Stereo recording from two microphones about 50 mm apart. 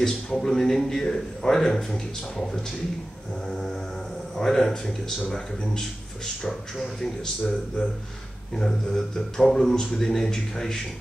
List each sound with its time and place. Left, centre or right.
0.0 s a man's voice: centre
4.4 s a man's voice: centre
8.5 s a man's voice: centre